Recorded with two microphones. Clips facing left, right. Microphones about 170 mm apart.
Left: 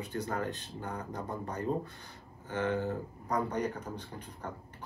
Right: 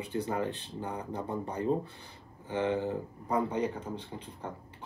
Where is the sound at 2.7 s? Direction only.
Centre (ahead or behind).